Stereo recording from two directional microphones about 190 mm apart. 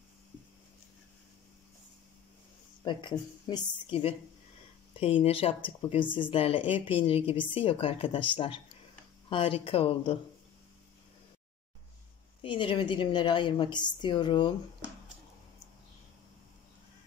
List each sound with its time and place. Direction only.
2.8 s a woman's voice: 25° left (ahead or behind)
12.4 s a woman's voice: 25° left (ahead or behind)